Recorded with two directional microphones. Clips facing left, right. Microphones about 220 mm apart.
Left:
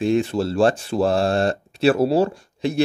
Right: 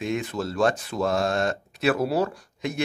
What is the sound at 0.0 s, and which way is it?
Speech, 30° left (ahead or behind).